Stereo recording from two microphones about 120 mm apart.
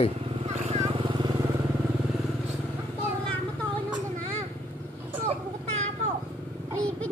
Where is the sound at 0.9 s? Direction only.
45° right (ahead or behind).